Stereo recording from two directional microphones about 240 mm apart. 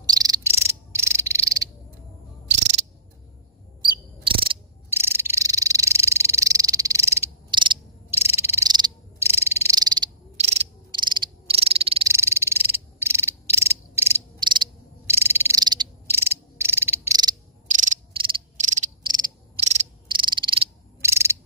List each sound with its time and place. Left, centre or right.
0.0 s frog: centre
4.2 s cricket: right
4.8 s frog: centre
10.3 s cricket: right
12.1 s frog: centre
18.3 s cricket: right
19.0 s frog: right
21.0 s a sound: centre